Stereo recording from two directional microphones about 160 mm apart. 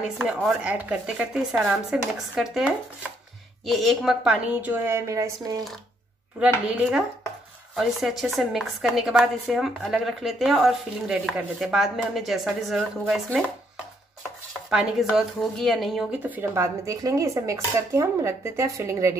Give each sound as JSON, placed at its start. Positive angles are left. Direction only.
{"t": 0.2, "sound": "a woman's voice", "side_deg": 0}
{"t": 6.4, "sound": "a woman's voice", "side_deg": -5}
{"t": 14.7, "sound": "speech", "side_deg": -5}